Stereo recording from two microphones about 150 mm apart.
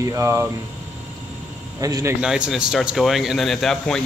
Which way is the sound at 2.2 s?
5° right (ahead or behind).